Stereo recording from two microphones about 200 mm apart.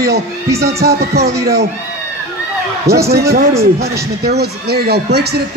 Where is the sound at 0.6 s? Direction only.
50° right (ahead or behind).